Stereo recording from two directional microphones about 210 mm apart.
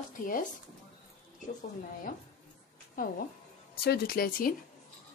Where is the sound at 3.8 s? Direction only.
45° left (ahead or behind).